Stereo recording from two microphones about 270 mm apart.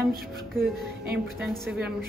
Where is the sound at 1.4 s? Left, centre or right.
Centre.